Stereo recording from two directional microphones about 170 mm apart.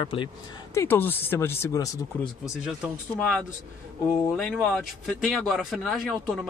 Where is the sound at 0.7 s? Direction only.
10° left (ahead or behind).